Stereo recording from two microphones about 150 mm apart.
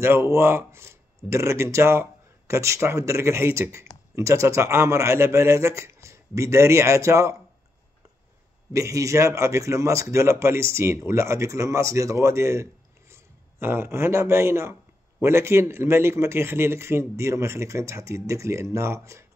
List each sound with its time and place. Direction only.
0.0 s speech: 15° right (ahead or behind)
8.7 s speech: 20° right (ahead or behind)